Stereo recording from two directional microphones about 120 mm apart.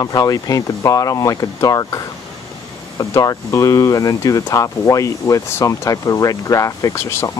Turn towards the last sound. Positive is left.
turn(degrees=25)  # may be behind; listen again after turning